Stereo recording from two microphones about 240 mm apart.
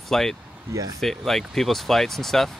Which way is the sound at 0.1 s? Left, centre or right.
Centre.